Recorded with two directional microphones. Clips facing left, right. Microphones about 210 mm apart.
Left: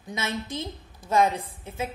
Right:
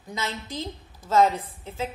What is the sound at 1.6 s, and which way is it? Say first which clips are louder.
Speech: right 1 dB; 15° left (ahead or behind).